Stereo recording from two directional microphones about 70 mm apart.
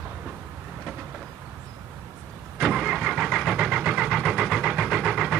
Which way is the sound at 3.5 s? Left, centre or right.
Centre.